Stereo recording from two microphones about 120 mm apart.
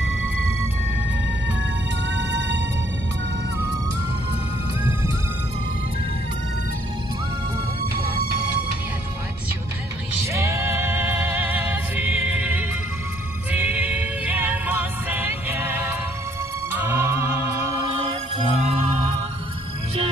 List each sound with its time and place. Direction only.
10.2 s music: 25° right (ahead or behind)
18.0 s music: 60° right (ahead or behind)